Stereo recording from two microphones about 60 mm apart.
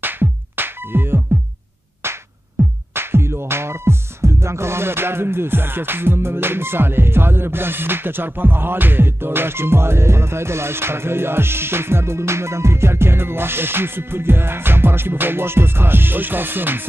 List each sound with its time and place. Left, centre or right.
0.0 s music: right